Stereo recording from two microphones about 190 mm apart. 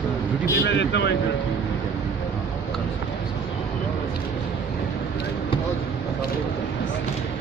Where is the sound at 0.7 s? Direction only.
65° left (ahead or behind).